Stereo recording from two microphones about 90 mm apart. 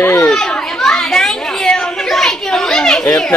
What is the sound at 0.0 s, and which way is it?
Children playing, 30° left (ahead or behind).